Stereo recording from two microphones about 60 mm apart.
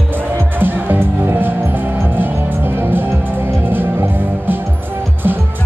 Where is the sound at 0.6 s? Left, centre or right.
Right.